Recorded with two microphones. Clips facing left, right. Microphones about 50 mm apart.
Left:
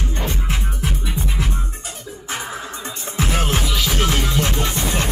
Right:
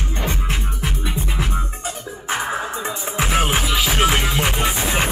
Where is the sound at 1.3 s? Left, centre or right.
Centre.